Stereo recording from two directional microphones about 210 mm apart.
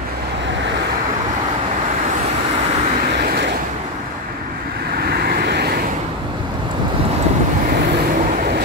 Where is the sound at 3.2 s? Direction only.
50° right (ahead or behind).